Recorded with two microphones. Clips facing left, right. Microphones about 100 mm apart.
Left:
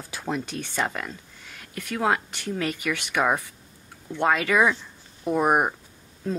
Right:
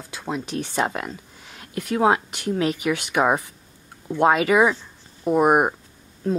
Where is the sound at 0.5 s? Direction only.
20° right (ahead or behind).